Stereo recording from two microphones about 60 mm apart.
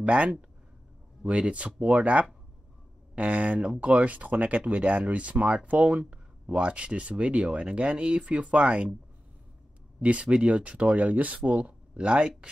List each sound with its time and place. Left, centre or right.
0.0 s speech: right
9.9 s speech: right